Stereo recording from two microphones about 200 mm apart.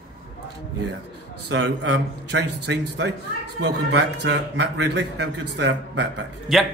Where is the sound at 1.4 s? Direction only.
60° right (ahead or behind).